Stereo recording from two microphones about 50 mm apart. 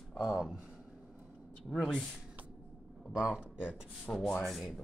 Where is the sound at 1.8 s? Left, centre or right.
Centre.